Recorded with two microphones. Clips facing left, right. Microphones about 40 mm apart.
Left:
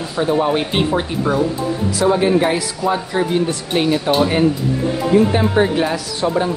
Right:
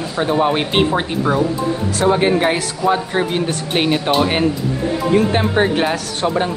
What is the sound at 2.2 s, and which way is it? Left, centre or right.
Speech, right.